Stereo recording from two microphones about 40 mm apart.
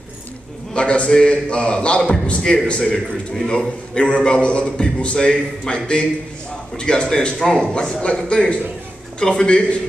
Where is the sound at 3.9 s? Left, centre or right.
Left.